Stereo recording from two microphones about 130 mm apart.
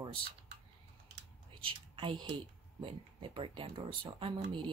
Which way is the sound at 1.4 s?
40° right (ahead or behind).